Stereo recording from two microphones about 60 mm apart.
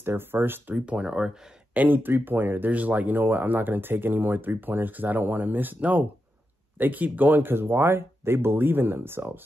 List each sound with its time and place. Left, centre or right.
0.0 s speech: right
0.7 s speech: right
1.7 s speech: right